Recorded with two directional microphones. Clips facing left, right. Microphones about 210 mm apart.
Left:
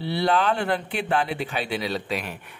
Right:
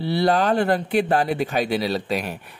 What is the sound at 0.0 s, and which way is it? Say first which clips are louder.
A man's voice: right 3 dB; 40° right (ahead or behind).